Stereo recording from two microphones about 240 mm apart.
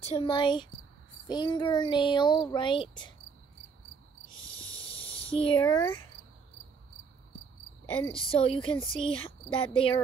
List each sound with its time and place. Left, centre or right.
0.0 s speech: left
4.3 s a sound: left
8.3 s speech: left